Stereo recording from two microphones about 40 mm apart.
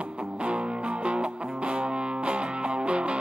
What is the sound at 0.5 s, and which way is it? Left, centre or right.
Music, right.